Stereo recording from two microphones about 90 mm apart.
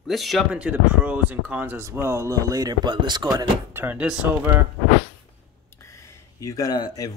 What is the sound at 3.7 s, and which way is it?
Speech, 20° right (ahead or behind).